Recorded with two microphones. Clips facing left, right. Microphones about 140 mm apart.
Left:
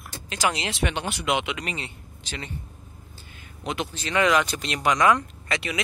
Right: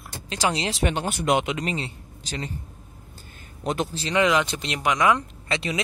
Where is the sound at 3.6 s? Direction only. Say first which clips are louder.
Right 3 dB; 40° right (ahead or behind).